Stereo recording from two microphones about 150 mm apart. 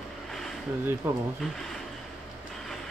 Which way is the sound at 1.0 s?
15° right (ahead or behind).